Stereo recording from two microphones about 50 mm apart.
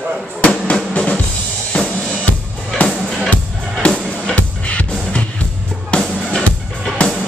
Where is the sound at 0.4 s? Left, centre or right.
Left.